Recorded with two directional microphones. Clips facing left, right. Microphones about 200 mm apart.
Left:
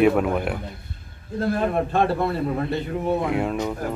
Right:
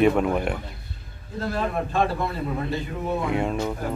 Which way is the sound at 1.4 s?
50° left (ahead or behind).